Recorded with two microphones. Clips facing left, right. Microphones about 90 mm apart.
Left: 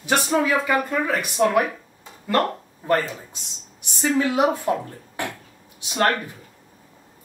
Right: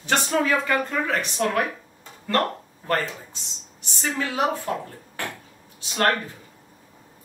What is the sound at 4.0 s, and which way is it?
Speech, 15° left (ahead or behind).